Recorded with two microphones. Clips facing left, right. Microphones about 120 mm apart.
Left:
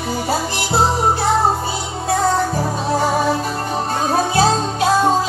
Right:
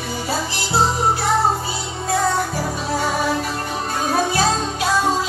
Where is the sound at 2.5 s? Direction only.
30° left (ahead or behind).